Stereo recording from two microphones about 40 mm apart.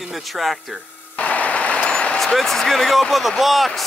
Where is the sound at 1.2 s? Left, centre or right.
Left.